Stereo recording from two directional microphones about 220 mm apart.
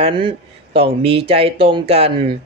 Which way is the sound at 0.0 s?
25° right (ahead or behind).